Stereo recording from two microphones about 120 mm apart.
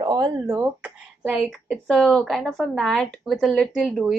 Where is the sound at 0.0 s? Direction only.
30° right (ahead or behind).